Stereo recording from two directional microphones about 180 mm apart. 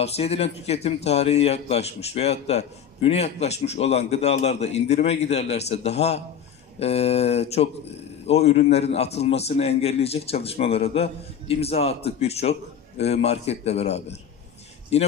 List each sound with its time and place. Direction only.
0.0 s a man's voice: 35° left (ahead or behind)